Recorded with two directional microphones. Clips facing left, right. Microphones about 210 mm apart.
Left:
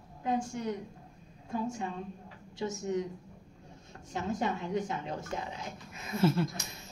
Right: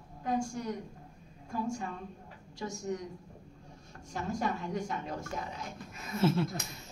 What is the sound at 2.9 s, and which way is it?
Speech, 25° left (ahead or behind).